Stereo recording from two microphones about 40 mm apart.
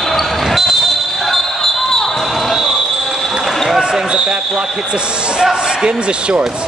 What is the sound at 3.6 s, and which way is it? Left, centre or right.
Speech, centre.